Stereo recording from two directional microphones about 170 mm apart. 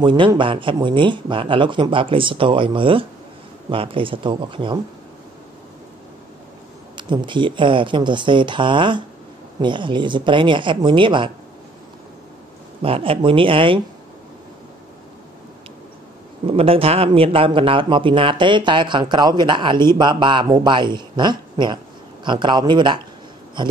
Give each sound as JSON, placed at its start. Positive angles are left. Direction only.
{"t": 0.0, "sound": "speech", "side_deg": -30}
{"t": 7.0, "sound": "speech", "side_deg": -30}
{"t": 12.8, "sound": "speech", "side_deg": -35}
{"t": 16.4, "sound": "speech", "side_deg": -35}